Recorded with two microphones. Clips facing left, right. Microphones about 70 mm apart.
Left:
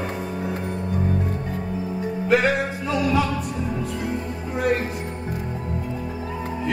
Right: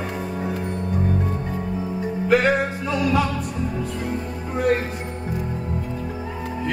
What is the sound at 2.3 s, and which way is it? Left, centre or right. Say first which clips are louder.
Music: right 1 dB; centre.